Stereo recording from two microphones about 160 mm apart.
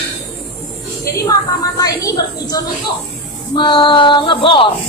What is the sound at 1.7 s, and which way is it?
A woman's voice, 25° left (ahead or behind).